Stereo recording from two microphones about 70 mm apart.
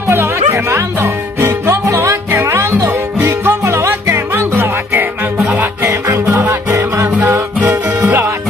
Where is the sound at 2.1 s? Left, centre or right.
Right.